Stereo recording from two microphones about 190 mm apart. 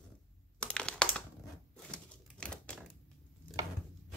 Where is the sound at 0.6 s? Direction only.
5° left (ahead or behind).